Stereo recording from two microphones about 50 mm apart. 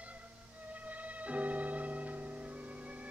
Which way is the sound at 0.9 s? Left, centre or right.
Right.